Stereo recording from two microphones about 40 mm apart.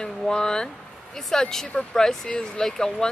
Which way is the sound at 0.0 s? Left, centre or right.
Centre.